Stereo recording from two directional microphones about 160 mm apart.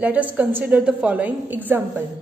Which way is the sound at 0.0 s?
10° right (ahead or behind).